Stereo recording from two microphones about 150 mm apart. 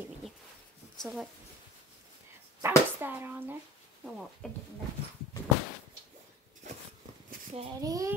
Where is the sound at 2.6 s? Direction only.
15° right (ahead or behind).